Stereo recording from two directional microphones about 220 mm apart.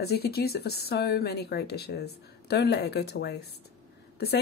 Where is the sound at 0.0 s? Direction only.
45° left (ahead or behind).